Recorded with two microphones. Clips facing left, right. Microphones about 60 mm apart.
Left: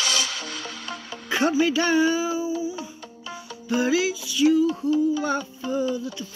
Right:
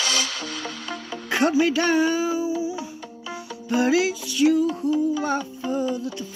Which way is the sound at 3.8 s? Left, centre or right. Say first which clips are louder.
Right 2 dB; right.